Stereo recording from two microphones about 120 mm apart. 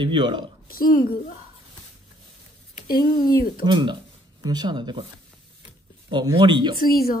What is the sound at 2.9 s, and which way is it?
Speech, 35° left (ahead or behind).